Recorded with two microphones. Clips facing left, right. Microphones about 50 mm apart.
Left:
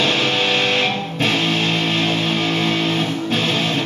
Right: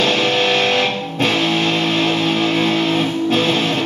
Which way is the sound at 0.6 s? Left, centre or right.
Centre.